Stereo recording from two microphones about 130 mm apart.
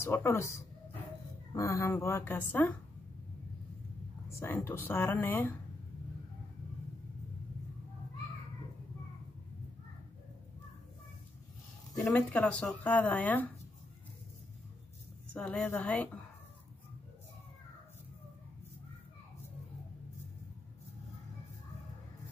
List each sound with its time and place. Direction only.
0.0 s speech: 20° left (ahead or behind)
4.4 s speech: 20° left (ahead or behind)
12.2 s speech: 10° left (ahead or behind)
15.3 s speech: 10° left (ahead or behind)